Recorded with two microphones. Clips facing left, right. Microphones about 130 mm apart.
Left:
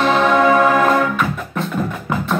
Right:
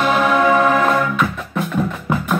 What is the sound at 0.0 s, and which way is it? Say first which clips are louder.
Music: left 1 dB; 5° right (ahead or behind).